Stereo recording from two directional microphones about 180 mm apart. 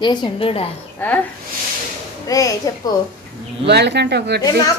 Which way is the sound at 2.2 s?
20° left (ahead or behind).